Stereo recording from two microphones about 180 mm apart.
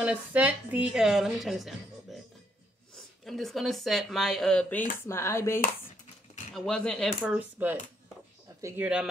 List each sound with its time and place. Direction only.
0.0 s a woman's voice: 5° right (ahead or behind)
3.3 s a woman's voice: centre (ahead or behind)
6.5 s a woman's voice: centre (ahead or behind); by 8.8 s 15° right (ahead or behind)
8.8 s a woman's voice: 5° right (ahead or behind)